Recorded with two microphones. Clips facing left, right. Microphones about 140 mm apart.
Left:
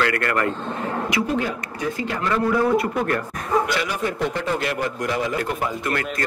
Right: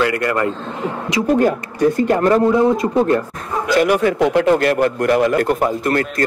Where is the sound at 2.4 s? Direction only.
20° right (ahead or behind).